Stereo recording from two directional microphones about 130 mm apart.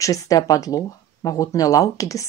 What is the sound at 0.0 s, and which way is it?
Speech, 25° left (ahead or behind).